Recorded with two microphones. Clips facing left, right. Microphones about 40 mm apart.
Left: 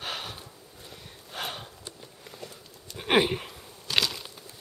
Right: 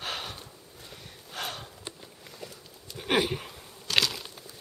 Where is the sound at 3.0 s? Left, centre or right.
Left.